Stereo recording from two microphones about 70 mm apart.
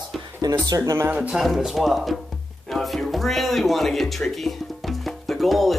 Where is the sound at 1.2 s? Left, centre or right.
Centre.